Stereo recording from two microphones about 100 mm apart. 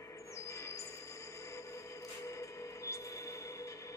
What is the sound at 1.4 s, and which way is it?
Music, 30° left (ahead or behind).